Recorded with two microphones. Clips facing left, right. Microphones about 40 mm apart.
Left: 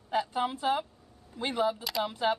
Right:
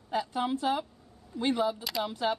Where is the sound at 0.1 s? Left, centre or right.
Centre.